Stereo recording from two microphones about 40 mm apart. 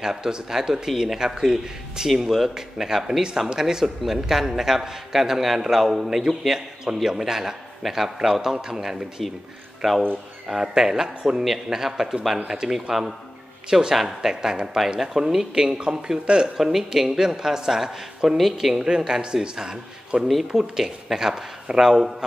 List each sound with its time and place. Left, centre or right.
0.0 s a man's voice: centre
2.2 s a man's voice: centre
9.8 s speech: centre
10.6 s a man's voice: centre
13.9 s speech: centre
14.3 s a man's voice: centre
16.5 s a man's voice: centre
20.2 s speech: centre
20.7 s a man's voice: centre